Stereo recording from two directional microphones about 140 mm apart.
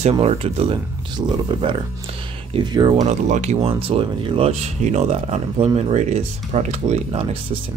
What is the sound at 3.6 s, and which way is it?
Speech, 40° right (ahead or behind).